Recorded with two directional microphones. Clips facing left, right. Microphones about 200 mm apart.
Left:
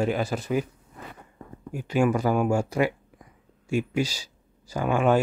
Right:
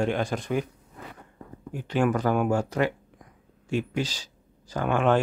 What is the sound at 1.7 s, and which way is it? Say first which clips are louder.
Speech: left 2 dB; 10° left (ahead or behind).